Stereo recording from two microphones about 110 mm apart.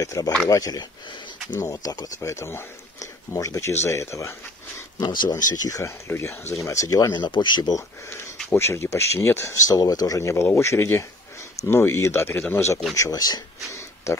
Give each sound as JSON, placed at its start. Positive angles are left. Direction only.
{"t": 0.0, "sound": "speech", "side_deg": 30}
{"t": 4.9, "sound": "speech", "side_deg": 40}
{"t": 7.2, "sound": "speech", "side_deg": 45}
{"t": 8.5, "sound": "speech", "side_deg": 25}